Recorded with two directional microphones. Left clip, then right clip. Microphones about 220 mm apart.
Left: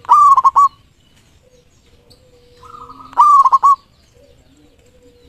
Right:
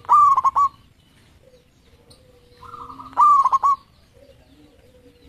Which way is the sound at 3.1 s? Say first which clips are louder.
Left 6 dB; 20° left (ahead or behind).